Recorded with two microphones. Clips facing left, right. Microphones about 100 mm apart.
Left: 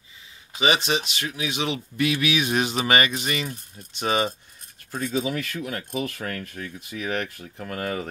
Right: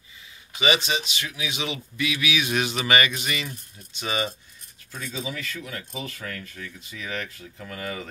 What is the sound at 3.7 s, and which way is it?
Speech, 50° left (ahead or behind).